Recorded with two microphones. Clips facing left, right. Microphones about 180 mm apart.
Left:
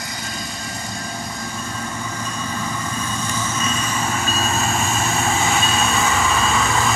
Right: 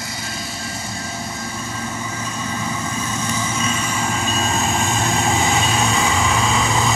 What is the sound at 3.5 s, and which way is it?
Vehicle, 10° right (ahead or behind).